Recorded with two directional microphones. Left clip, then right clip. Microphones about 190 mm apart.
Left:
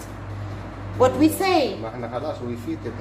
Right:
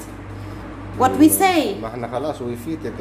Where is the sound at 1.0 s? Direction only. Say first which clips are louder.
Right 4 dB; 25° right (ahead or behind).